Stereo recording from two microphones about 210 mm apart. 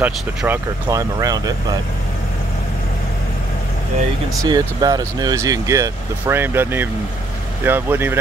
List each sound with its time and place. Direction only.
0.0 s speech: 10° right (ahead or behind)
4.4 s speech: 20° right (ahead or behind)